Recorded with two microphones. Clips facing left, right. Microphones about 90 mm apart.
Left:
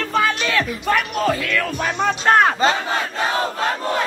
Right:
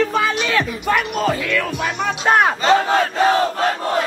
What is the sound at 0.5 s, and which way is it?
Speech, 20° right (ahead or behind).